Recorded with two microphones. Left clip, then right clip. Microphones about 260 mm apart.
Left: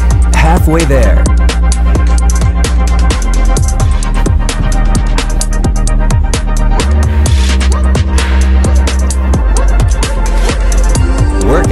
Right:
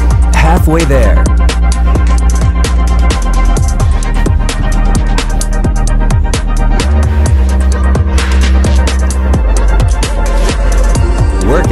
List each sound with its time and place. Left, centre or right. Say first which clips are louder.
0.3 s music: even; centre
2.6 s music: even; centre
4.9 s music: even; centre
7.9 s music: even; centre
10.4 s music: right 1 dB; centre